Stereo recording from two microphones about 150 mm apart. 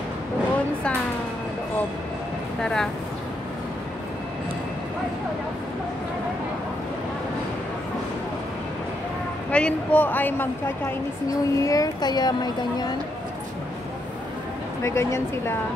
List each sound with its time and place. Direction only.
2.6 s speech: 5° left (ahead or behind)
9.5 s a man's voice: 10° left (ahead or behind)
11.2 s a woman's voice: 25° left (ahead or behind)
14.8 s a woman's voice: 20° left (ahead or behind)